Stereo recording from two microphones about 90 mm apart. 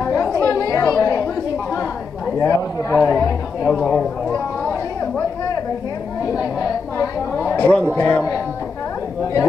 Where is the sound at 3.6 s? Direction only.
10° left (ahead or behind).